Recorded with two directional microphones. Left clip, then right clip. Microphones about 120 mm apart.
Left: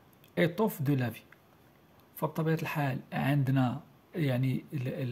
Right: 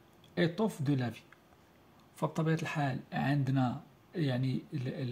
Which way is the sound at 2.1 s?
5° left (ahead or behind).